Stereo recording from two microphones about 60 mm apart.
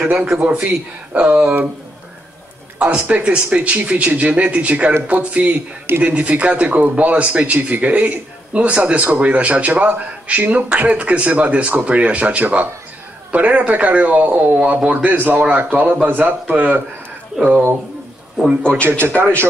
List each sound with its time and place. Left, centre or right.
0.4 s a man's voice: right
2.8 s a man's voice: right
6.1 s a man's voice: right
18.6 s a man's voice: centre
18.9 s a man's voice: right